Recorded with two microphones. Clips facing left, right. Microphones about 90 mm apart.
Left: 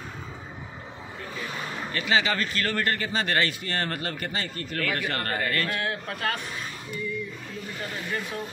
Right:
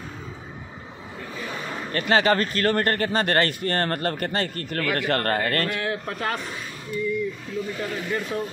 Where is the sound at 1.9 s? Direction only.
50° right (ahead or behind).